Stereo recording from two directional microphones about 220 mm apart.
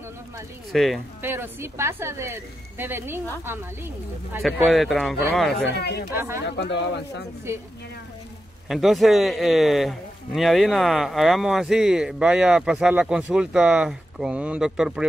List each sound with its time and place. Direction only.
0.7 s a man's voice: centre (ahead or behind)
1.2 s speech: 10° right (ahead or behind)
4.4 s a man's voice: centre (ahead or behind)
5.8 s speech: 45° left (ahead or behind)
6.1 s speech: 10° right (ahead or behind)
6.4 s speech: 50° left (ahead or behind)
8.6 s a man's voice: centre (ahead or behind)